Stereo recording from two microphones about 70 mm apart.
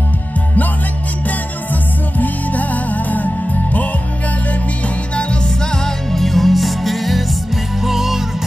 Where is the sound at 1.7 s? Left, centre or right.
Left.